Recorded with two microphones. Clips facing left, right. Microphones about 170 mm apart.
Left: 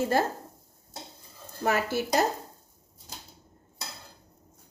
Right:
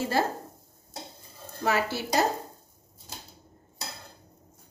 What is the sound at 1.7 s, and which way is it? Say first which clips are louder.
Speech: left 1 dB; 50° left (ahead or behind).